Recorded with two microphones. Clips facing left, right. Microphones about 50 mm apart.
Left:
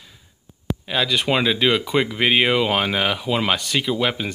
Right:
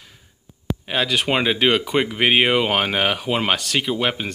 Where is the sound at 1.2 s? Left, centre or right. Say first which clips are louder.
Even; right.